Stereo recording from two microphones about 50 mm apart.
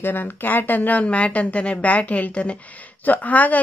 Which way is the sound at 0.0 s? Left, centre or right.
Left.